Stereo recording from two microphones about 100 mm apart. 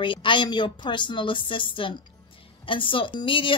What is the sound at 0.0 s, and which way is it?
A woman's voice, 55° left (ahead or behind).